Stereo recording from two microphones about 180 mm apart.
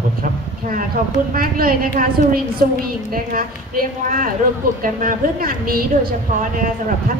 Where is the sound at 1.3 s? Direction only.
55° right (ahead or behind).